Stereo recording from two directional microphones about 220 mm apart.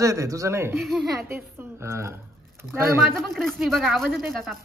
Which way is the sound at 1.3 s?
10° right (ahead or behind).